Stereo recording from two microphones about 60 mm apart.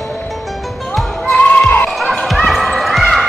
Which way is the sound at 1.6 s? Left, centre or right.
Left.